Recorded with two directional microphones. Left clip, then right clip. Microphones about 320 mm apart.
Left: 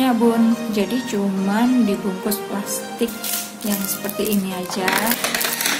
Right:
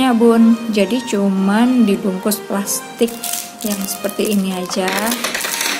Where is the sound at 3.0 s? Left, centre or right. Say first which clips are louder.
Right 7 dB; centre.